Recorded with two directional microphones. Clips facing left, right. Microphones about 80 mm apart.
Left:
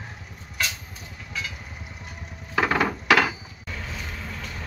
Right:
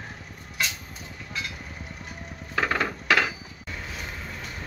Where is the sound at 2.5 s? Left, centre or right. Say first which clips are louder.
Left 3 dB; centre.